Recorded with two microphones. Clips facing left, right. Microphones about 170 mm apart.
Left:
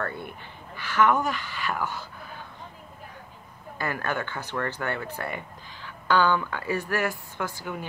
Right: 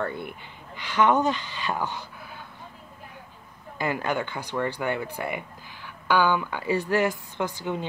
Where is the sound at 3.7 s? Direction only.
15° right (ahead or behind).